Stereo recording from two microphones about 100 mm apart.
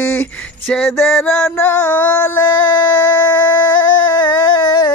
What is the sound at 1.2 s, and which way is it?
Music, 10° left (ahead or behind).